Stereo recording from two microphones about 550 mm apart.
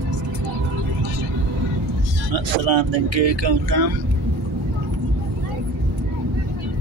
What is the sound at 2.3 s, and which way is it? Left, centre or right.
Speech, right.